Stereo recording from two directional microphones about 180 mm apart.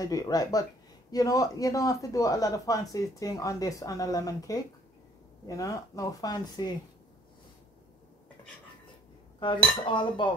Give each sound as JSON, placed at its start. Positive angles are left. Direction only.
{"t": 0.0, "sound": "speech", "side_deg": 20}
{"t": 9.8, "sound": "speech", "side_deg": 25}